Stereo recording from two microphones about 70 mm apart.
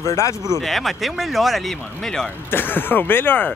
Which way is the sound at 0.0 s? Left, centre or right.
Left.